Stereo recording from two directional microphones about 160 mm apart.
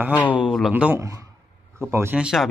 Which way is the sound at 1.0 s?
20° right (ahead or behind).